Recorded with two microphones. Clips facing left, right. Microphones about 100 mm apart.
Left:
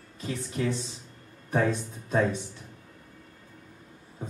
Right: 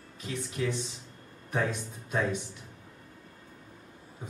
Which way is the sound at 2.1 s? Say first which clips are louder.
Left 4 dB; 40° left (ahead or behind).